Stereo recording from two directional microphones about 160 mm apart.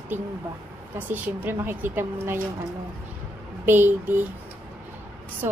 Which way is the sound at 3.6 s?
10° right (ahead or behind).